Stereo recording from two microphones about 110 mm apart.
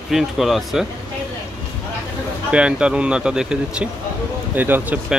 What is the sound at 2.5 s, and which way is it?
Speech, 10° right (ahead or behind).